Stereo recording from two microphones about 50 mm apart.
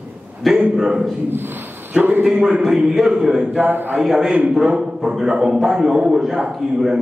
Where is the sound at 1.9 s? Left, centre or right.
Right.